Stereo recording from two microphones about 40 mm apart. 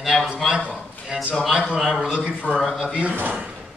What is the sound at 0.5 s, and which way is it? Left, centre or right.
Speech, centre.